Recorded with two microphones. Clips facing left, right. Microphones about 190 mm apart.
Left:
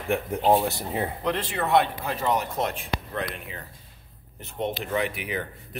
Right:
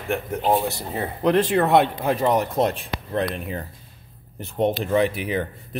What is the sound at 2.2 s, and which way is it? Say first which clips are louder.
Speech: right 5 dB; 35° right (ahead or behind).